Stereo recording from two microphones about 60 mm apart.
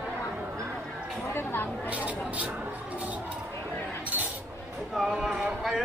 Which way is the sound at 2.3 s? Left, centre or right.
Right.